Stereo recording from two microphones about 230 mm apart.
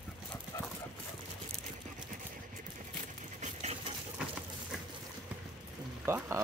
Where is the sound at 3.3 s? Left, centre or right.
Right.